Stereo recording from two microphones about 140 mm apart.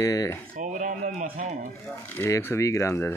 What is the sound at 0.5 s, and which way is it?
Speech, 65° right (ahead or behind).